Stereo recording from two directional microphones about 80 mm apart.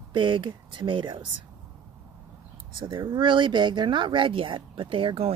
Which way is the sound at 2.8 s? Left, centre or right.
Right.